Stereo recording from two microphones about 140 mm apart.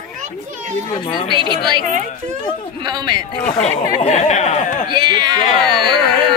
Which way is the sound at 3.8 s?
60° left (ahead or behind).